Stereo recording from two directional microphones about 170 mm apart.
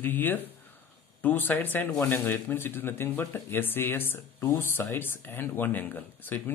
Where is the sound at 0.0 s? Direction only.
10° left (ahead or behind).